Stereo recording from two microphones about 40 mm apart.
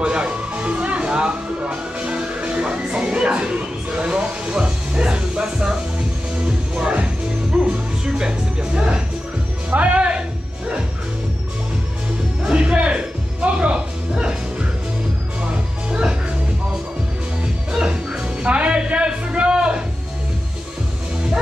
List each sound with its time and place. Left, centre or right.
0.0 s music: right
9.7 s music: right
12.4 s music: right
15.9 s music: right
17.6 s music: right
18.2 s music: right